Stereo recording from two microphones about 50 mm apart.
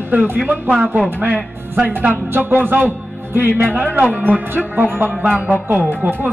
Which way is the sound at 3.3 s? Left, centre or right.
Right.